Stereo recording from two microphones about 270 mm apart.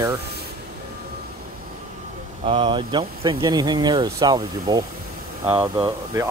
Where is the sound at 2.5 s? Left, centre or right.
Centre.